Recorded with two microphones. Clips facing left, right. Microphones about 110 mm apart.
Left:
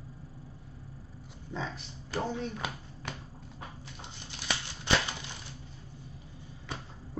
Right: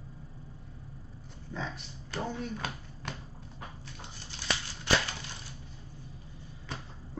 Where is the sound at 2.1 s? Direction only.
10° left (ahead or behind).